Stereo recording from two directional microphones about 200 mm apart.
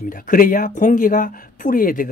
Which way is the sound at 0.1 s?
45° left (ahead or behind).